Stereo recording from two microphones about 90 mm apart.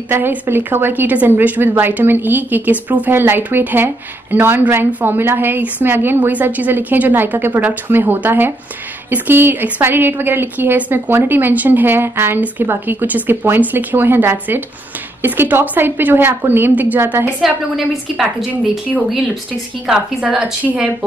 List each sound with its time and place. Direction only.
0.1 s a woman's voice: 25° right (ahead or behind)
17.4 s a woman's voice: centre (ahead or behind)
19.9 s a woman's voice: 10° right (ahead or behind)